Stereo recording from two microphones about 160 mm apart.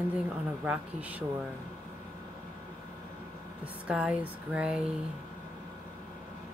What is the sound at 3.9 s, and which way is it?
Speech, 5° right (ahead or behind).